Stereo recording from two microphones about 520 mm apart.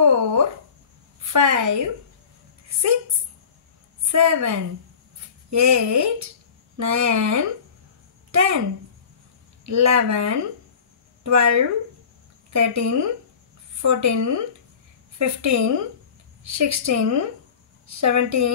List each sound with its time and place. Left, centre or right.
0.0 s a sound: right
4.1 s a woman's voice: right
9.7 s a woman's voice: right